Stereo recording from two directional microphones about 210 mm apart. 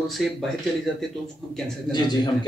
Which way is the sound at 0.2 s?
Centre (ahead or behind).